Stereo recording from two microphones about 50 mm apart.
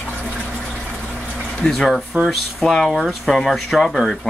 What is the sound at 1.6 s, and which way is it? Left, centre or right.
Speech, centre.